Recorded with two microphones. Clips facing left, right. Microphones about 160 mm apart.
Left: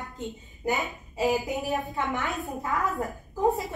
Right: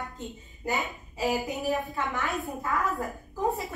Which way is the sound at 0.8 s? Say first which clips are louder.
Left 3 dB; 20° left (ahead or behind).